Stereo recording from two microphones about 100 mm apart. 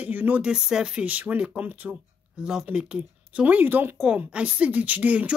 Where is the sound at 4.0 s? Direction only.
10° right (ahead or behind).